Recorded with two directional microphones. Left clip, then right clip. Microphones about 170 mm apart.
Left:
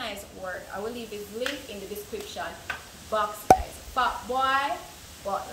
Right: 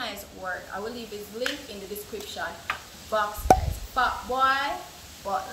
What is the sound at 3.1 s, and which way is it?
Speech, centre (ahead or behind).